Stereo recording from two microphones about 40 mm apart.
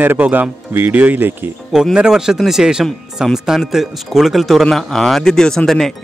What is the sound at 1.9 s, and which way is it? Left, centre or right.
Speech, centre.